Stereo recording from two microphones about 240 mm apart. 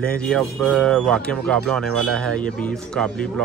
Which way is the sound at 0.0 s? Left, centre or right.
Centre.